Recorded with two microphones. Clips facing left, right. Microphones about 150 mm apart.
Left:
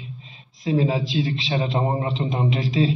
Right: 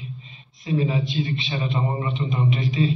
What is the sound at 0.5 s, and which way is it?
A man's voice, 90° left.